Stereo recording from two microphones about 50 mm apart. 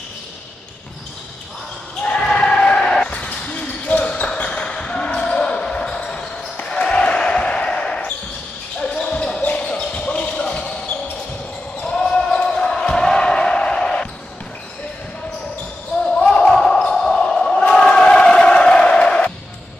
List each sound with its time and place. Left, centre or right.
2.0 s basketball bounce: centre
3.1 s basketball bounce: left
16.1 s basketball bounce: centre
17.2 s crowd: centre